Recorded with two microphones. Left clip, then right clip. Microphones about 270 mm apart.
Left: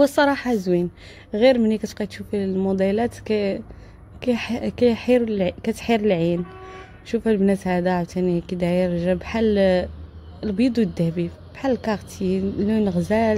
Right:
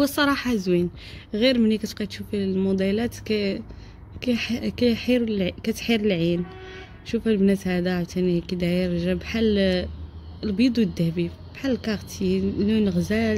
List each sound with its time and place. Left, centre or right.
0.0 s a woman's voice: centre